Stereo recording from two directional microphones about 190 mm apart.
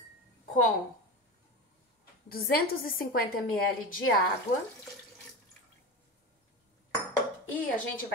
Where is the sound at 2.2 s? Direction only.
50° left (ahead or behind).